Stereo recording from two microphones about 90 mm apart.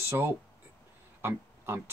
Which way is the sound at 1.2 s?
30° right (ahead or behind).